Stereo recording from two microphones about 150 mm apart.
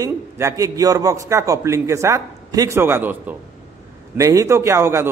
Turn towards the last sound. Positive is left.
turn(degrees=-20)  # may be behind; listen again after turning